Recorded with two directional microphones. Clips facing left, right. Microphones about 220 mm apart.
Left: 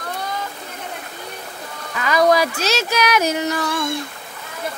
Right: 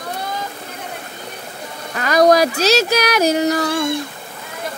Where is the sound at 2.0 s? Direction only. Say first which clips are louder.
Right 3 dB; 40° right (ahead or behind).